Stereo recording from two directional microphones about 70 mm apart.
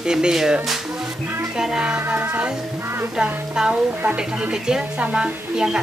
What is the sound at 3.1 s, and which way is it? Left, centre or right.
Speech, centre.